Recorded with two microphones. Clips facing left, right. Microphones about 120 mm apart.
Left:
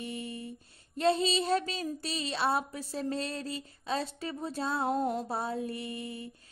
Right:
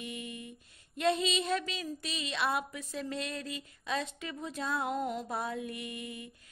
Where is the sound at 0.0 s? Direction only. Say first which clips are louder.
Left 3 dB; 35° left (ahead or behind).